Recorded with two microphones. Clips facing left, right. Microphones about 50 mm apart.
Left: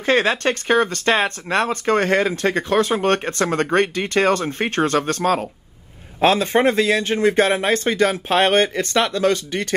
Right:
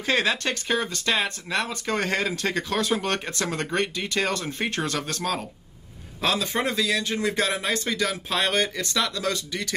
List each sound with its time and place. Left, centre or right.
0.0 s speech: left